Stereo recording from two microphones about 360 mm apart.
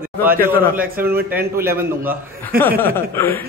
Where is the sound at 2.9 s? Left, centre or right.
Centre.